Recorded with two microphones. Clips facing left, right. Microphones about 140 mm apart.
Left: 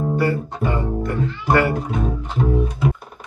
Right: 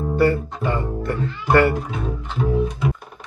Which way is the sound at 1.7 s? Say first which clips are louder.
Left 2 dB; 40° left (ahead or behind).